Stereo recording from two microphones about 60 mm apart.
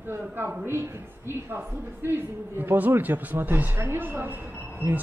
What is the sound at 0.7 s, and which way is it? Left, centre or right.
A woman's voice, right.